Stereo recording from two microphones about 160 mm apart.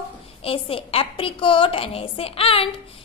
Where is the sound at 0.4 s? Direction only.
35° left (ahead or behind).